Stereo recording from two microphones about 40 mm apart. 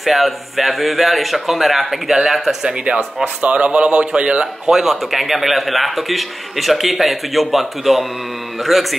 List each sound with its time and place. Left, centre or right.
0.0 s a man's voice: centre
3.3 s speech: right
4.6 s a man's voice: centre